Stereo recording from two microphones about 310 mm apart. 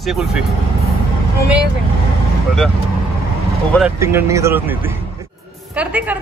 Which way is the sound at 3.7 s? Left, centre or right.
Centre.